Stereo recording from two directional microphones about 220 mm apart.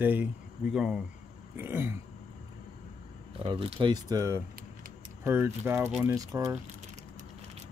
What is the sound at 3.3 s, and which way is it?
Speech, 25° right (ahead or behind).